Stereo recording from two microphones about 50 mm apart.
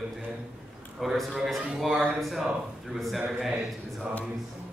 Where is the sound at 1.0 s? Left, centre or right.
Centre.